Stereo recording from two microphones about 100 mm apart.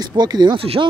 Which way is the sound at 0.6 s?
65° right (ahead or behind).